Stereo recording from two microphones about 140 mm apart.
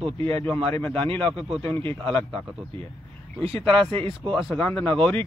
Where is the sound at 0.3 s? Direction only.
15° left (ahead or behind).